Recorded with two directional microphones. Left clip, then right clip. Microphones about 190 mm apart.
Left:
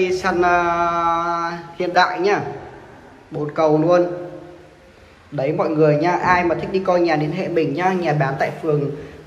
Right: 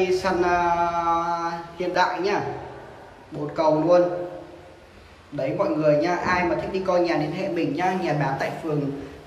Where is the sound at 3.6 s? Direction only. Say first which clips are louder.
Left 3 dB; 5° right (ahead or behind).